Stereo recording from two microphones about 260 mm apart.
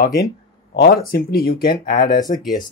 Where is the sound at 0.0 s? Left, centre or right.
Left.